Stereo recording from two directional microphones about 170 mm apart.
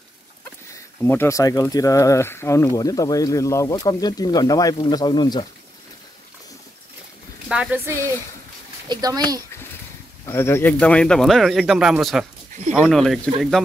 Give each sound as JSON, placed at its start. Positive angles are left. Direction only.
{"t": 1.0, "sound": "speech", "side_deg": 15}
{"t": 7.4, "sound": "speech", "side_deg": -5}
{"t": 8.8, "sound": "a child's voice", "side_deg": -25}
{"t": 10.2, "sound": "speech", "side_deg": 15}